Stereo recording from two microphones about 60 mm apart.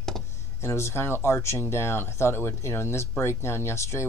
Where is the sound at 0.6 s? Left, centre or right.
Left.